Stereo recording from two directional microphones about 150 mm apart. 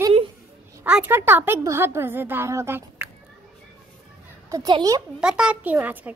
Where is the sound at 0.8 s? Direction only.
10° right (ahead or behind).